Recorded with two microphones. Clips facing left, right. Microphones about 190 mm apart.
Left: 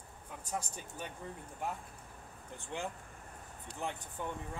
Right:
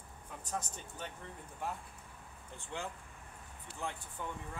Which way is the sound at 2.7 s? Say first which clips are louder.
Left 2 dB; 20° left (ahead or behind).